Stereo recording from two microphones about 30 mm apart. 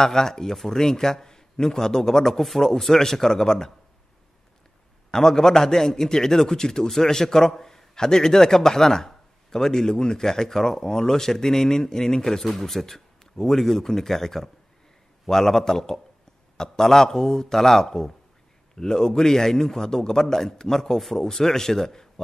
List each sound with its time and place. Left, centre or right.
0.0 s a man's voice: centre
5.1 s a man's voice: centre